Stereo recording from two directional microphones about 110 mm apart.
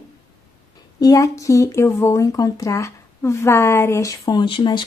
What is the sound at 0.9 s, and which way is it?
Speech, 35° left (ahead or behind).